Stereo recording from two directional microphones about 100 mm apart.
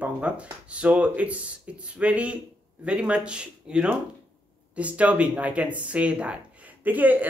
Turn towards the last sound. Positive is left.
turn(degrees=-15)  # may be behind; listen again after turning